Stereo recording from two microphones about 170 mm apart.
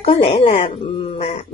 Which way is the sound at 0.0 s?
35° left (ahead or behind).